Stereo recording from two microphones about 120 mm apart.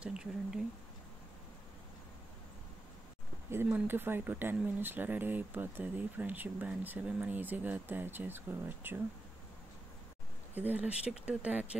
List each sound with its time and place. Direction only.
0.0 s a sound: 5° right (ahead or behind)
3.6 s speech: 15° right (ahead or behind)
10.5 s speech: 15° right (ahead or behind)